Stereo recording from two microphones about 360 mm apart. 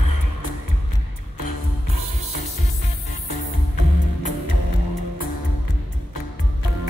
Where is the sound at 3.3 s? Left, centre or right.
Left.